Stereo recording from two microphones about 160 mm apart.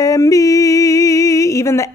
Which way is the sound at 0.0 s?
20° left (ahead or behind).